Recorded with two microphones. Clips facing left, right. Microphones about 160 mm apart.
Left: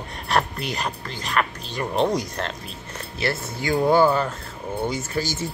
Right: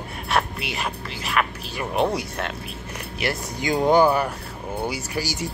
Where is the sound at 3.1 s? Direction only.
15° right (ahead or behind).